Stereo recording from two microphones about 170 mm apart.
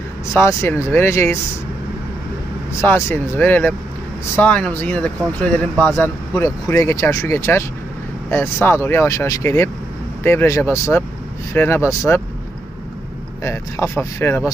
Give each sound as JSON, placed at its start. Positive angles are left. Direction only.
{"t": 0.4, "sound": "speech", "side_deg": 15}
{"t": 2.8, "sound": "speech", "side_deg": 15}
{"t": 13.4, "sound": "speech", "side_deg": 15}